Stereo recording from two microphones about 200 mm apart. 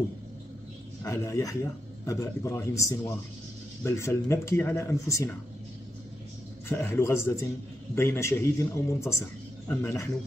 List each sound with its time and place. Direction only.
1.0 s a man's voice: 15° left (ahead or behind)
6.7 s a man's voice: 15° left (ahead or behind)